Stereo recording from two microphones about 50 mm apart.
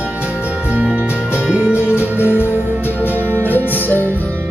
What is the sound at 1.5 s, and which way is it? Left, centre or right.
Music, right.